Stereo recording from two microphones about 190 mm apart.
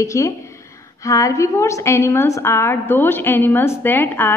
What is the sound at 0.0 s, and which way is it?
A woman's voice, 15° left (ahead or behind).